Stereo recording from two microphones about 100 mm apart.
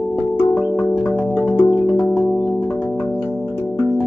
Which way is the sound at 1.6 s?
20° left (ahead or behind).